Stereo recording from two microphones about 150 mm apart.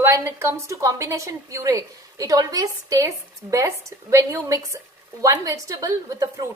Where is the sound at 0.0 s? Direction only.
15° right (ahead or behind).